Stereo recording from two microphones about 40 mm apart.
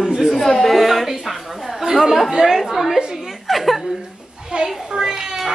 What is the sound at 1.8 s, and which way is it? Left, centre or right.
A woman's voice, centre.